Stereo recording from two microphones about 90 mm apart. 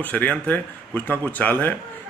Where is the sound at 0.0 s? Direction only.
20° left (ahead or behind).